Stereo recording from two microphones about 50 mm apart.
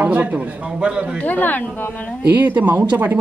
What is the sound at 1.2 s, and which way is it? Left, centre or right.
Speech, left.